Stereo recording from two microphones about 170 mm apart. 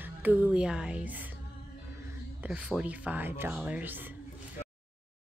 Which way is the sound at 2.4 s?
5° right (ahead or behind).